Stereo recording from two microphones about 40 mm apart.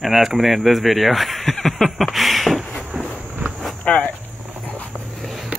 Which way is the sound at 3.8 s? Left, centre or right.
Left.